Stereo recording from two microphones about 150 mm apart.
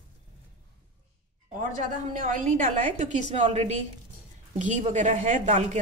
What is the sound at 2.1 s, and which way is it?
A woman's voice, 60° right (ahead or behind).